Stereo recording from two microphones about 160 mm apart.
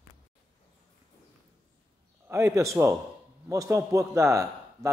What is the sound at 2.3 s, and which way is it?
A man's voice, 20° right (ahead or behind).